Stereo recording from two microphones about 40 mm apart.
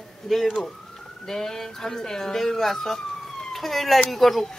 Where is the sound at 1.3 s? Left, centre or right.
Centre.